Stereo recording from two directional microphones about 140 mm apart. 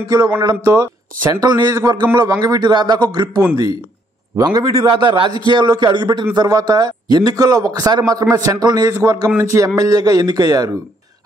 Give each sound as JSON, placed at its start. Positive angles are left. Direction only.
{"t": 0.4, "sound": "a man's voice", "side_deg": -30}